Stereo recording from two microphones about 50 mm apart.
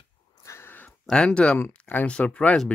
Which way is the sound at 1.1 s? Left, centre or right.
Centre.